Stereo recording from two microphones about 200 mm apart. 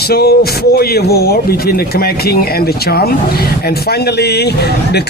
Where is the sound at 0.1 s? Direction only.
50° left (ahead or behind).